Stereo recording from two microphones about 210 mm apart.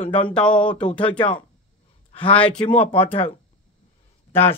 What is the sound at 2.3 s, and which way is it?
Speech, 5° left (ahead or behind).